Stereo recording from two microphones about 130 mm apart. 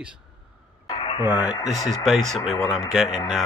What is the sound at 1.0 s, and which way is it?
Radio, 40° left (ahead or behind).